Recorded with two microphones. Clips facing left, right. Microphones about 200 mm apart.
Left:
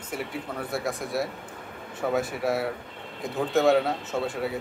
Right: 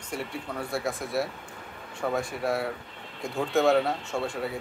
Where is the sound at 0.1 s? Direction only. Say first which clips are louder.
Left 1 dB; centre (ahead or behind).